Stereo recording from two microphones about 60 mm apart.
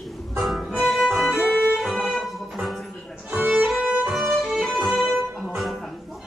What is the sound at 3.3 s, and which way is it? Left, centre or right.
Music, right.